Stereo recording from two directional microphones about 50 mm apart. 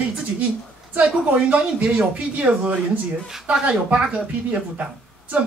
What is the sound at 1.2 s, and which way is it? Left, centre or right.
A woman's voice, right.